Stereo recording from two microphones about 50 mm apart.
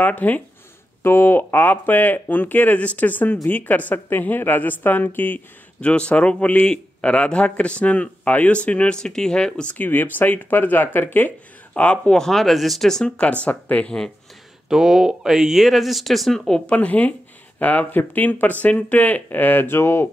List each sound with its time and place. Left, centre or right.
0.0 s speech: left
1.0 s speech: left
5.8 s speech: left
9.7 s speech: left
11.7 s speech: left
12.1 s speech: centre
13.0 s speech: left
13.8 s speech: centre
14.7 s speech: centre
16.3 s speech: centre
16.6 s speech: left